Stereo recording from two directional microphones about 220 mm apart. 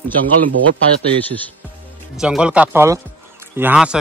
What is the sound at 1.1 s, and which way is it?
Speech, 5° left (ahead or behind).